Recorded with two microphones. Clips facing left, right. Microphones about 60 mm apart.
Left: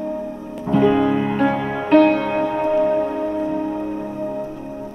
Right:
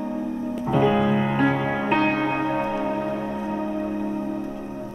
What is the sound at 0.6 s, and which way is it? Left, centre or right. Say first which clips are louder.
Music: left 4 dB; centre.